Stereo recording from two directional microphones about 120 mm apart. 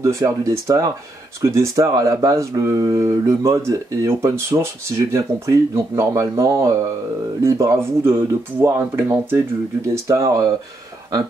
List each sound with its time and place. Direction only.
0.0 s speech: 25° right (ahead or behind)